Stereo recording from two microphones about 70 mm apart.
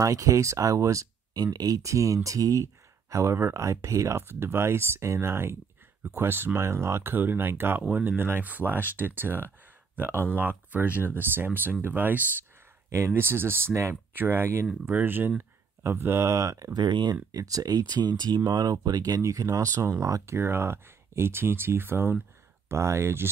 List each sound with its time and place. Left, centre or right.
0.0 s speech: right
1.3 s speech: right
12.9 s speech: right
14.9 s speech: right
16.7 s speech: right
20.3 s speech: right